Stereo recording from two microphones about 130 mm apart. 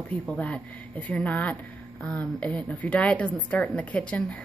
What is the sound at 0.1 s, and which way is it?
A woman's voice, 10° left (ahead or behind).